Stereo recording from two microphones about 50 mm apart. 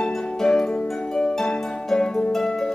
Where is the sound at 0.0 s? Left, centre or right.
Centre.